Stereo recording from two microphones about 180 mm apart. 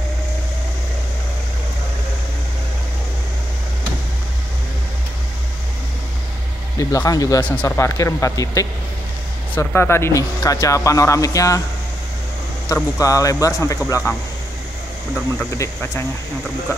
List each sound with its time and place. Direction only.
6.8 s speech: 20° left (ahead or behind)
12.6 s speech: 15° left (ahead or behind)
15.5 s speech: 15° left (ahead or behind)